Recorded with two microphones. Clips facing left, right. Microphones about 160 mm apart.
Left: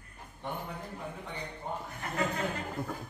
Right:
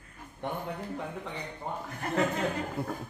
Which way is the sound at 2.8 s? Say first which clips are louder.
Right 2 dB; 10° right (ahead or behind).